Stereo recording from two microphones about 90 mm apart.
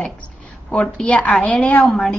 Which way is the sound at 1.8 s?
5° left (ahead or behind).